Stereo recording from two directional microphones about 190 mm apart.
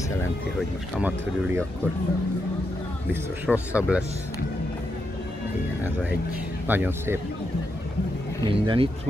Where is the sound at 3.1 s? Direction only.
5° right (ahead or behind).